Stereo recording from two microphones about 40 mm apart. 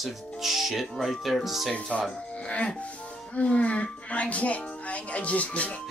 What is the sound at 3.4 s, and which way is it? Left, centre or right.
Speech, left.